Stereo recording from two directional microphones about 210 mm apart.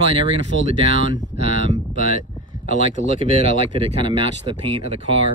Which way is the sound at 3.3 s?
25° right (ahead or behind).